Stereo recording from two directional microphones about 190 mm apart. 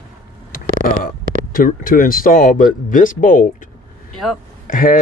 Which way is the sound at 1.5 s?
45° left (ahead or behind).